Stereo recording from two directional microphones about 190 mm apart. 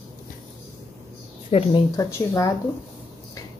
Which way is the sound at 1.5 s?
30° left (ahead or behind).